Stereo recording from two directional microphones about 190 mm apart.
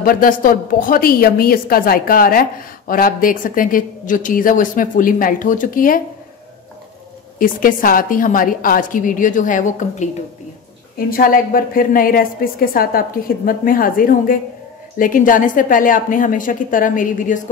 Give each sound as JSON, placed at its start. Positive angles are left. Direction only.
{"t": 0.0, "sound": "a woman's voice", "side_deg": 50}
{"t": 7.3, "sound": "a woman's voice", "side_deg": 45}